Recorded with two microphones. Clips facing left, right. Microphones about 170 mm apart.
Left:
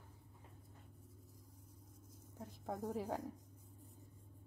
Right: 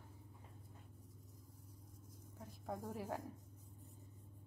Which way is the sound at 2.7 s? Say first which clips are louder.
Left 3 dB; 20° left (ahead or behind).